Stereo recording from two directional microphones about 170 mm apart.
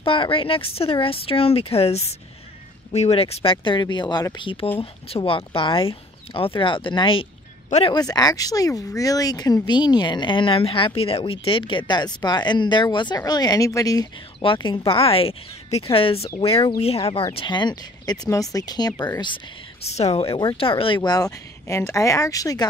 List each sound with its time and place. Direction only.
0.0 s speech: 30° left (ahead or behind)
14.4 s speech: 30° left (ahead or behind)
19.9 s speech: 40° left (ahead or behind); by 22.7 s 20° left (ahead or behind)